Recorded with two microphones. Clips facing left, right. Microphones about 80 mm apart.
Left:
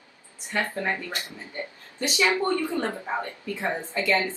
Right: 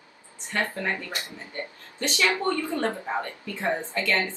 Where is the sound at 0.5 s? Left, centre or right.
Left.